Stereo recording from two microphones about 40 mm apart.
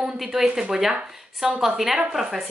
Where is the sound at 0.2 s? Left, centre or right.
Centre.